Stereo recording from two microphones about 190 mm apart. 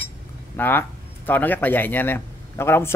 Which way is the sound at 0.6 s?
10° left (ahead or behind).